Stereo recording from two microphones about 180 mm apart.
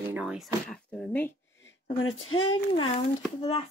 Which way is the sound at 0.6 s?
10° left (ahead or behind).